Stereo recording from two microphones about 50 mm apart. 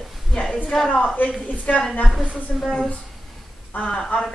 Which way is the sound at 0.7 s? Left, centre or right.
Centre.